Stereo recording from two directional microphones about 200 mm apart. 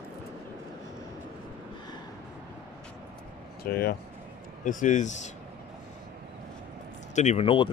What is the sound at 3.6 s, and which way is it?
Speech, 50° left (ahead or behind).